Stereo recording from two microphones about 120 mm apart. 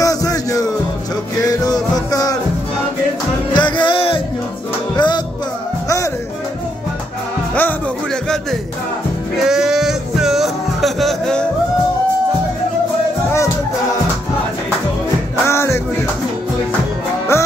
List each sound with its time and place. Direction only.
0.0 s music: 30° left (ahead or behind)
3.5 s music: 40° left (ahead or behind)
9.4 s music: 5° right (ahead or behind)
15.4 s music: 25° left (ahead or behind)
17.3 s music: 20° left (ahead or behind)